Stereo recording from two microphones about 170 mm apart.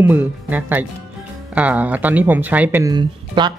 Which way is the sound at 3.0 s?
25° right (ahead or behind).